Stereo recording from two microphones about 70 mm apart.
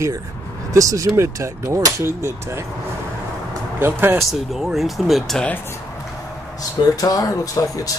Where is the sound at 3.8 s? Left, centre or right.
Right.